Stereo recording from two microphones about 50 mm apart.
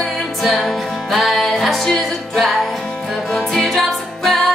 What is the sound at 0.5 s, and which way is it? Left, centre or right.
Music, centre.